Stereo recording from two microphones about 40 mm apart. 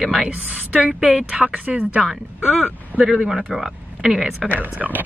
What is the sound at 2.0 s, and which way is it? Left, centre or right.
Speech, centre.